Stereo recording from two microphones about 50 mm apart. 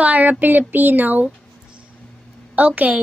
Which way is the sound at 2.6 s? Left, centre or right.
Right.